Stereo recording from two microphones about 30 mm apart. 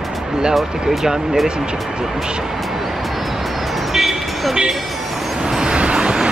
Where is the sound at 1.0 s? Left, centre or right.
Centre.